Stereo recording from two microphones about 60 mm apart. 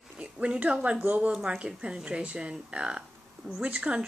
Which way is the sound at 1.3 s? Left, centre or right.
Centre.